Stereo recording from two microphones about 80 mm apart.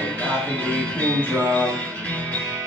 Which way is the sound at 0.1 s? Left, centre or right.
Centre.